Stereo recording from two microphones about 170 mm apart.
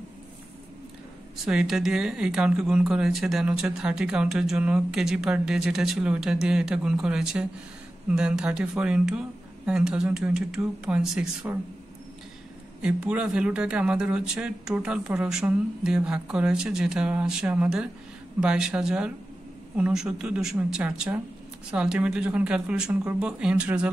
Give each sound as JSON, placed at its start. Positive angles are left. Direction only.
{"t": 1.3, "sound": "speech", "side_deg": -5}
{"t": 12.8, "sound": "speech", "side_deg": -5}